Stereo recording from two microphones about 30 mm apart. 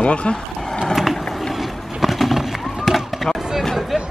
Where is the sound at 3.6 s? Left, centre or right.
Centre.